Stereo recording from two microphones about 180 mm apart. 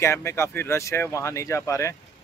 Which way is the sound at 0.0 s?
15° left (ahead or behind).